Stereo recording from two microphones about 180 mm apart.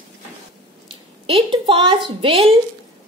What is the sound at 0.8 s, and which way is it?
A woman's voice, 30° right (ahead or behind).